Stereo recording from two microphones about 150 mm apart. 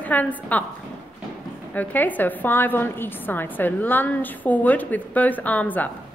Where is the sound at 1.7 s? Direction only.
10° left (ahead or behind).